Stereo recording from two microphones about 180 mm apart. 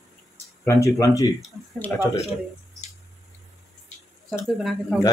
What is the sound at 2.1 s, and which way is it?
Speech, 35° left (ahead or behind).